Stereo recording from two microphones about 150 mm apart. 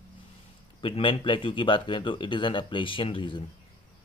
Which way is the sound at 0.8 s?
35° left (ahead or behind).